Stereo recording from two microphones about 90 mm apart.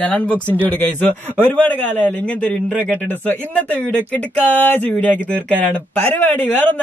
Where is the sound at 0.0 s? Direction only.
15° left (ahead or behind).